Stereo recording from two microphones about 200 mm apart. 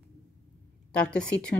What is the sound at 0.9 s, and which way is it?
Speech, 5° left (ahead or behind).